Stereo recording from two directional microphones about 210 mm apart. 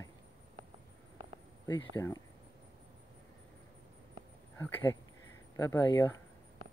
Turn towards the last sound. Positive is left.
turn(degrees=10)  # may be behind; listen again after turning